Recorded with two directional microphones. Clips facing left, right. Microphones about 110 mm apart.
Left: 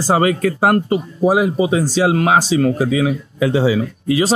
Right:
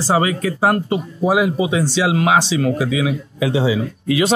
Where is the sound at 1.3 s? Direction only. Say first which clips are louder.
Even; 35° left (ahead or behind).